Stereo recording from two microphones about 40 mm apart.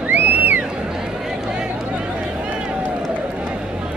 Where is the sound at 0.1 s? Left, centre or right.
Right.